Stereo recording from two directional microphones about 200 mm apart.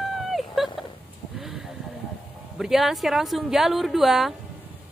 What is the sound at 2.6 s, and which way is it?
Speech, centre (ahead or behind).